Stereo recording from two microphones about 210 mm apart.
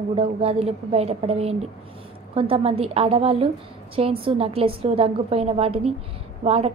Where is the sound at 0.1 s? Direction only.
30° right (ahead or behind).